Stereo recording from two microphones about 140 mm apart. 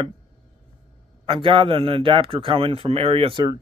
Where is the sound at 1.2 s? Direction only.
40° right (ahead or behind).